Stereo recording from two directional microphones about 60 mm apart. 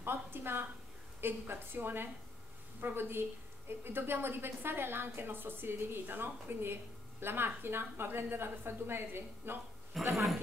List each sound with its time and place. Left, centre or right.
0.0 s a woman's voice: right
9.9 s speech: centre